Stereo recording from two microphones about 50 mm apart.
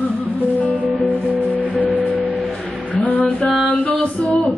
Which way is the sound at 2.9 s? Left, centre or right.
Left.